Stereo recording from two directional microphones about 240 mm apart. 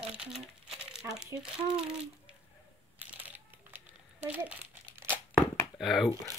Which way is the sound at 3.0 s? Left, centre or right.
Centre.